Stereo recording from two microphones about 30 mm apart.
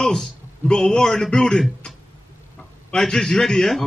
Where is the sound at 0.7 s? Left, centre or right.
Left.